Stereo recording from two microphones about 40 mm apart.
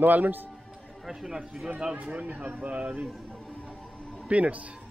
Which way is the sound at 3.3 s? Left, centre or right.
Left.